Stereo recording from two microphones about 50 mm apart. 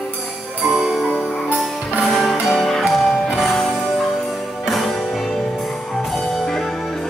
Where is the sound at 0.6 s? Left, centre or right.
Centre.